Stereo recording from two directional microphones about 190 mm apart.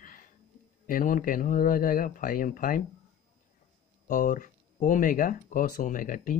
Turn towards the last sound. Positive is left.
turn(degrees=45)  # may be behind; listen again after turning